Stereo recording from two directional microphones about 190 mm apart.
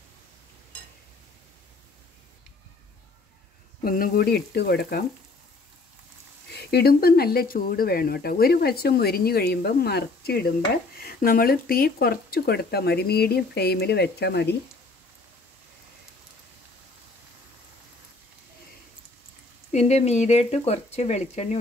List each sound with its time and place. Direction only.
3.8 s speech: 50° left (ahead or behind)
6.5 s speech: 60° left (ahead or behind)
19.7 s speech: 35° left (ahead or behind)